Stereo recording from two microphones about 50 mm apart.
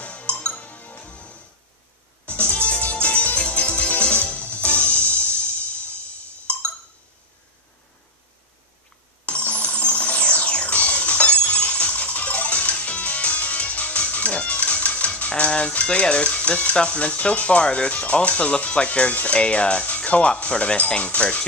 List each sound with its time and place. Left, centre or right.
0.0 s music: left
6.5 s a sound: left
9.2 s music: left